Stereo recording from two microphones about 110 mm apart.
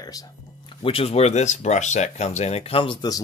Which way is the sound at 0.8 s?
60° left (ahead or behind).